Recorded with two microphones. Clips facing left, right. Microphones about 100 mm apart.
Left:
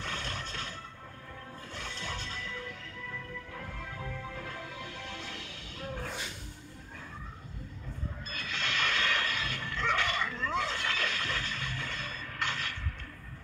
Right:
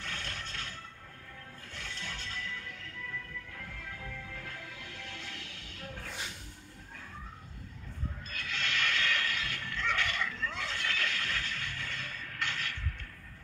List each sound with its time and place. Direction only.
0.0 s music: 25° left (ahead or behind)
8.3 s dog: 25° left (ahead or behind)